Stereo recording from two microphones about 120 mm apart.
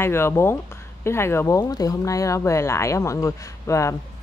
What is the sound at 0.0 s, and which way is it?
Speech, 20° left (ahead or behind).